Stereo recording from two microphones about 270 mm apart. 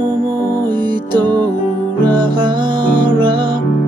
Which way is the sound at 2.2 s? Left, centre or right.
Centre.